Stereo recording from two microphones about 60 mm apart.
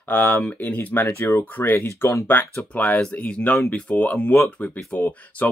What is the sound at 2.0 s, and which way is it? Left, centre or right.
Speech, left.